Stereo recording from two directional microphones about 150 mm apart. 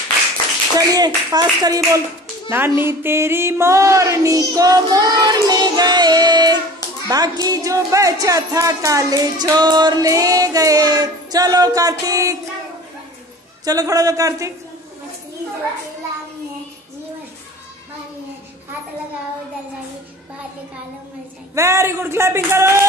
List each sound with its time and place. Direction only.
0.7 s a woman's voice: 25° right (ahead or behind)
13.7 s a woman's voice: 25° right (ahead or behind)
21.5 s speech: 20° right (ahead or behind)